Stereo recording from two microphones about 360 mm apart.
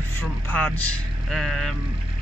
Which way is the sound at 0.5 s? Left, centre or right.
Centre.